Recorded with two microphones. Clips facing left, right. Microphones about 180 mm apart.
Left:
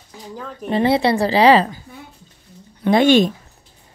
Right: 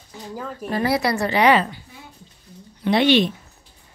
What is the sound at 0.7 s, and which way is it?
A woman's voice, 25° left (ahead or behind).